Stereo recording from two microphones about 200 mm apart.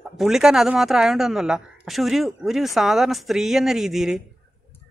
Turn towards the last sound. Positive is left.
turn(degrees=0)  # may be behind; listen again after turning